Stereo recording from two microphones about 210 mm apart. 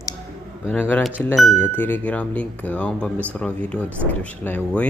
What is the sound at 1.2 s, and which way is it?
Speech, 10° left (ahead or behind).